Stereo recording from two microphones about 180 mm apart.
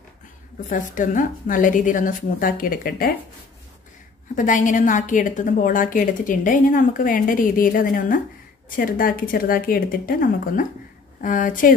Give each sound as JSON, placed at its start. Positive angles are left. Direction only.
{"t": 0.7, "sound": "a woman's voice", "side_deg": 45}
{"t": 4.4, "sound": "a woman's voice", "side_deg": 45}